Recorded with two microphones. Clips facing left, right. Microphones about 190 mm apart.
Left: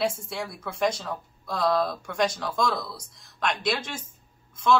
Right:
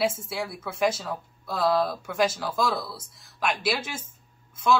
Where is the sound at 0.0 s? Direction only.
5° right (ahead or behind).